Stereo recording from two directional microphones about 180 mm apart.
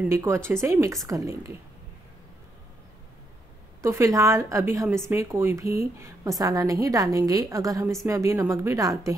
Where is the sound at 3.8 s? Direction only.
15° right (ahead or behind).